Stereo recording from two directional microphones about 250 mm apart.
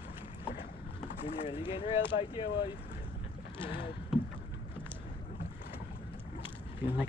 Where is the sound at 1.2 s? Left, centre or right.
Left.